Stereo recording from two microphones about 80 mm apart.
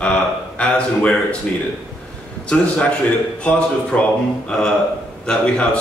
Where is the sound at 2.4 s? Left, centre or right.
Centre.